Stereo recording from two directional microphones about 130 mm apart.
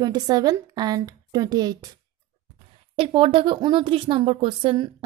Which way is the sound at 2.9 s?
45° right (ahead or behind).